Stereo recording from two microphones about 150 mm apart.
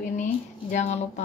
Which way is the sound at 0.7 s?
50° left (ahead or behind).